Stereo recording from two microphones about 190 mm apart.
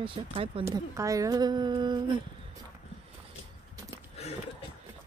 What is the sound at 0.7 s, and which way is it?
Speech, 15° right (ahead or behind).